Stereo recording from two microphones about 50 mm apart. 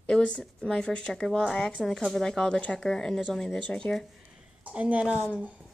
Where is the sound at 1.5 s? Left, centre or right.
Left.